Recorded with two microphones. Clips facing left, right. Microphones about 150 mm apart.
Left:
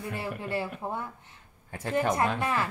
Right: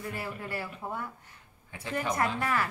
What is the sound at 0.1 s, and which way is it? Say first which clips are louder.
Speech: left 4 dB; 25° left (ahead or behind).